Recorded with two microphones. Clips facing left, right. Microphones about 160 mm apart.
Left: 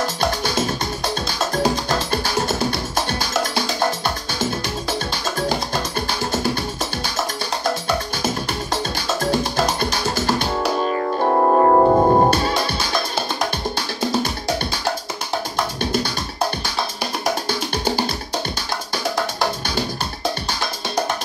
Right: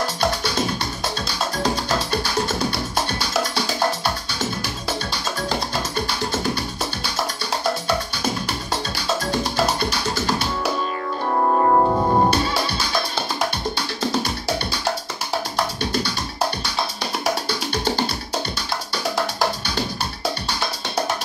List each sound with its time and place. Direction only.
11.2 s music: 35° left (ahead or behind)